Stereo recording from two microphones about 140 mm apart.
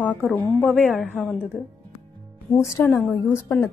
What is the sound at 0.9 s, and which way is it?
Speech, centre (ahead or behind).